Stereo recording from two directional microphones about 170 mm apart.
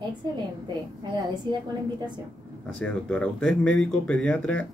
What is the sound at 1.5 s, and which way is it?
Speech, 25° right (ahead or behind).